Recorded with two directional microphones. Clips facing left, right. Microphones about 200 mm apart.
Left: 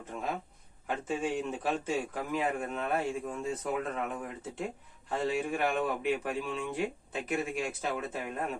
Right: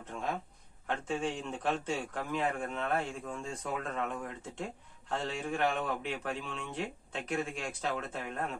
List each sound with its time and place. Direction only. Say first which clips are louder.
0.1 s a man's voice: left 1 dB; 5° left (ahead or behind)